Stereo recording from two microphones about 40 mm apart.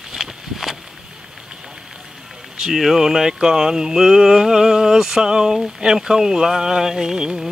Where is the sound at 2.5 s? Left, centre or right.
Centre.